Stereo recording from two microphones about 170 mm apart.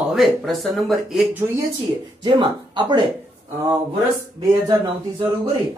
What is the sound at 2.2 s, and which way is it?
Speech, 25° right (ahead or behind).